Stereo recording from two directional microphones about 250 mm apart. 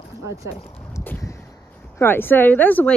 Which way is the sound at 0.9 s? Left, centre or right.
Centre.